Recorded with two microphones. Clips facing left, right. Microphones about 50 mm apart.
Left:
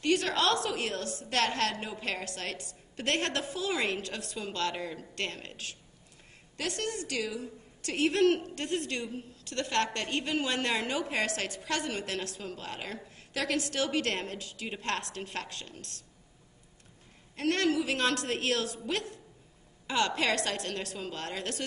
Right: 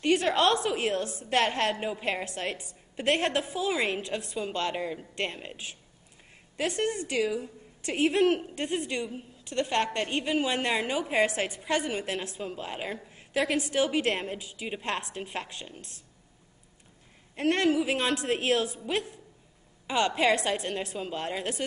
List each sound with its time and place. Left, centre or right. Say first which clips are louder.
0.0 s a woman's voice: right 4 dB; right
17.4 s a woman's voice: right 3 dB; right